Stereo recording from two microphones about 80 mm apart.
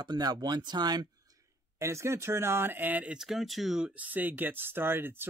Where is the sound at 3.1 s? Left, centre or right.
Centre.